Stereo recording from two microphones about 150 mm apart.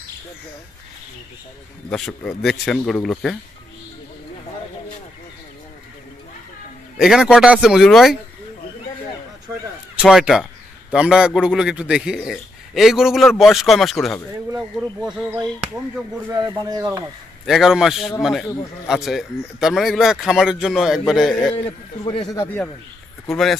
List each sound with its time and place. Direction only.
1.9 s a man's voice: 5° left (ahead or behind)
7.0 s a man's voice: 5° right (ahead or behind)
10.0 s a man's voice: 5° right (ahead or behind)
16.3 s speech: 25° right (ahead or behind)
17.5 s a man's voice: centre (ahead or behind)
22.0 s speech: 25° left (ahead or behind)
23.2 s a man's voice: centre (ahead or behind)